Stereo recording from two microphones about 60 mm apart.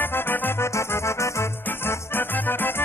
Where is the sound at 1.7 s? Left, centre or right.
Left.